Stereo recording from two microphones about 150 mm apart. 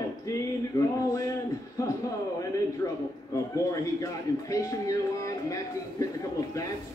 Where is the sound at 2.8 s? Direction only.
25° left (ahead or behind).